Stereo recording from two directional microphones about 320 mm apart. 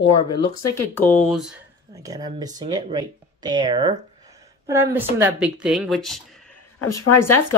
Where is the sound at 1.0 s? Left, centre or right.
Centre.